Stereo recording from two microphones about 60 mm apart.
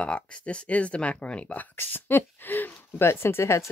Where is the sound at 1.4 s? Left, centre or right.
Left.